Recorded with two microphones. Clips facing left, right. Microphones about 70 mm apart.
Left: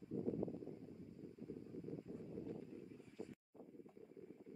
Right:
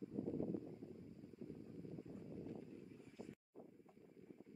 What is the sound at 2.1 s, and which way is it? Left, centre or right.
Wind, centre.